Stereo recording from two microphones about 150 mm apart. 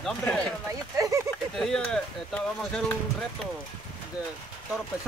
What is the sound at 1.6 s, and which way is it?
Speech, 5° left (ahead or behind).